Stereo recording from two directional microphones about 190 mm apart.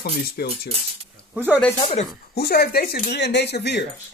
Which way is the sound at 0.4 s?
60° left (ahead or behind).